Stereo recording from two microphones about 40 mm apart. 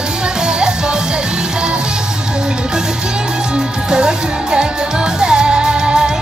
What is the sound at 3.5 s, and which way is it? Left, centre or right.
Music, right.